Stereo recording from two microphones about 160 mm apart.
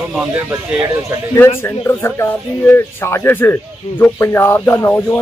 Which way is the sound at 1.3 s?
15° left (ahead or behind).